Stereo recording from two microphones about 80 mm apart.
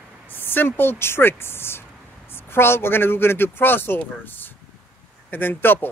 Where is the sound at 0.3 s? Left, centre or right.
Left.